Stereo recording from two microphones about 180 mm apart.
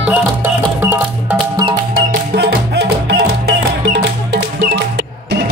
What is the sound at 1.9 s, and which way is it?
Music, 65° right (ahead or behind).